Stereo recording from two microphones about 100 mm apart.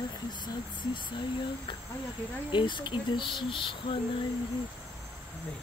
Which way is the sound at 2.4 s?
55° left (ahead or behind).